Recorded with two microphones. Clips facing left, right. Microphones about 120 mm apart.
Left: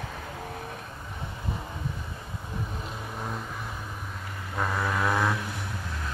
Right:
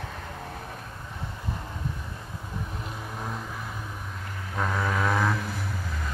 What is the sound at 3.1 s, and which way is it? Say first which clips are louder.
Vehicle: even; centre (ahead or behind).